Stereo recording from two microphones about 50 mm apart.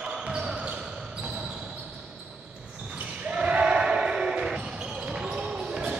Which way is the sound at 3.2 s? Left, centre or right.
Right.